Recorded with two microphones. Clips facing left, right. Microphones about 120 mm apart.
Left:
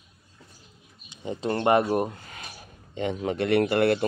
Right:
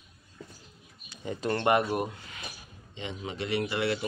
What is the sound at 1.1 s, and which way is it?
Speech, 25° left (ahead or behind).